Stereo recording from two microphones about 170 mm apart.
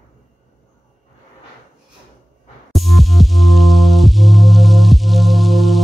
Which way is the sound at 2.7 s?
Centre (ahead or behind).